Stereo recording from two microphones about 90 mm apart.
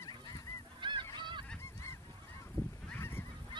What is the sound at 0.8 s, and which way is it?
Goose, 60° right (ahead or behind).